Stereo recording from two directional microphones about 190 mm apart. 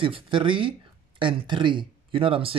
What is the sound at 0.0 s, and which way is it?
Speech, 25° right (ahead or behind).